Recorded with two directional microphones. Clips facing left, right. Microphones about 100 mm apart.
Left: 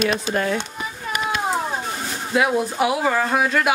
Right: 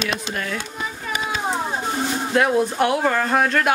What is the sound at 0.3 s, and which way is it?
Speech, 30° left (ahead or behind).